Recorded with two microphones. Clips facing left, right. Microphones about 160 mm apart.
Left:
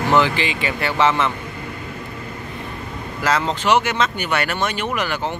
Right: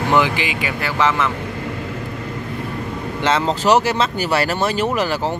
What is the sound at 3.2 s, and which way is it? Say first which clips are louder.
Speech: right 2 dB; 25° right (ahead or behind).